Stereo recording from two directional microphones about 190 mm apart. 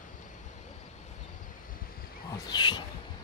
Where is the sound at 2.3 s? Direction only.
20° left (ahead or behind).